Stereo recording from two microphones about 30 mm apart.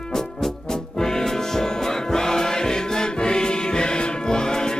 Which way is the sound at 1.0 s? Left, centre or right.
Centre.